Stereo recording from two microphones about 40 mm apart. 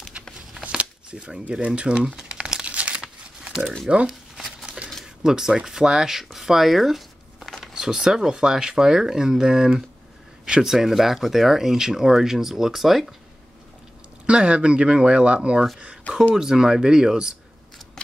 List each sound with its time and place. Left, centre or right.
0.2 s a sound: right
1.1 s speech: right
2.1 s crumpling: right
3.0 s crumpling: right
3.9 s speech: centre
4.5 s a sound: centre
5.0 s speech: centre
7.6 s a sound: centre
8.3 s speech: centre
14.2 s speech: right
16.3 s speech: centre